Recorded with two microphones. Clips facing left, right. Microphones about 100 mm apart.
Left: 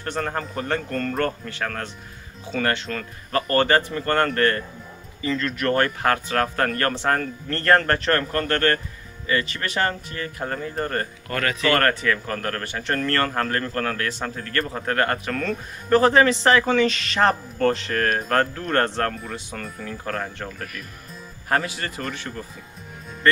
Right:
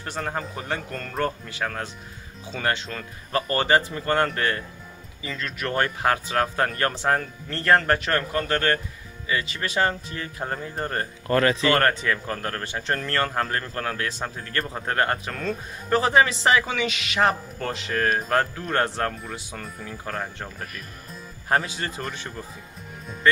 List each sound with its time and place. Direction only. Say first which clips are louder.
0.0 s speech: left 3 dB; 10° right (ahead or behind)
21.6 s speech: left 1 dB; 25° right (ahead or behind)